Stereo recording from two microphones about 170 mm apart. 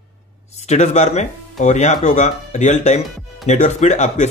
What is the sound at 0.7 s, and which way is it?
Speech, 40° left (ahead or behind).